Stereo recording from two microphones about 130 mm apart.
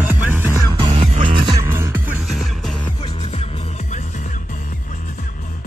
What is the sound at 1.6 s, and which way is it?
Music, 20° right (ahead or behind).